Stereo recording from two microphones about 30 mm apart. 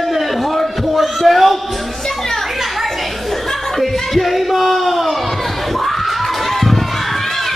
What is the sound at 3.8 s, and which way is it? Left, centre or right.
Music, centre.